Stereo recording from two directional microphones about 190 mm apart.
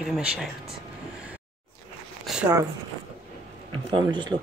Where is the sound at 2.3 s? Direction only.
5° right (ahead or behind).